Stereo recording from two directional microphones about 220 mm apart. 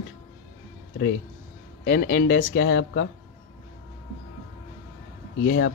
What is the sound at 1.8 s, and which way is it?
A man's voice, 45° left (ahead or behind).